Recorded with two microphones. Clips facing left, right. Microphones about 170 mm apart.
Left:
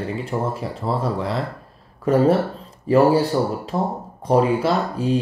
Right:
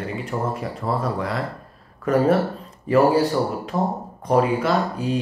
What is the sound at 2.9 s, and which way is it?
Speech, 30° left (ahead or behind).